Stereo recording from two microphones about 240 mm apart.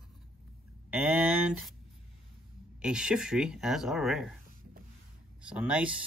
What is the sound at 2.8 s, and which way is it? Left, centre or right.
Speech, centre.